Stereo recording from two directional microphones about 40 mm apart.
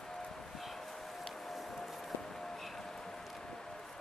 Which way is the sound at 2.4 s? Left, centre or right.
Centre.